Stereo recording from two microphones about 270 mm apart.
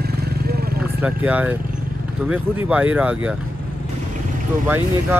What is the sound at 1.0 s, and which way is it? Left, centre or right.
Speech, centre.